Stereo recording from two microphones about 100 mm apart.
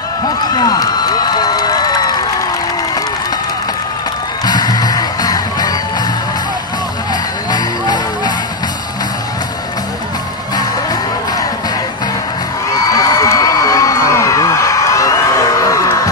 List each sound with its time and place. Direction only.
0.6 s music: 40° left (ahead or behind)
4.5 s music: 40° left (ahead or behind)
7.5 s music: 45° left (ahead or behind)
12.7 s a sound: 35° left (ahead or behind)